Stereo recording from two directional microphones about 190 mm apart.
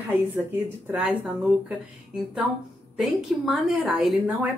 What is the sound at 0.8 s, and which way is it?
Speech, 5° right (ahead or behind).